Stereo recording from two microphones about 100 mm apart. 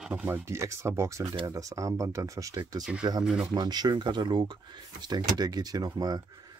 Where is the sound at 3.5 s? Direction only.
45° right (ahead or behind).